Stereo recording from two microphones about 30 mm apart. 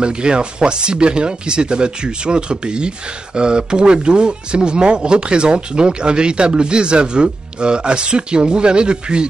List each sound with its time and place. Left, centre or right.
0.0 s speech: right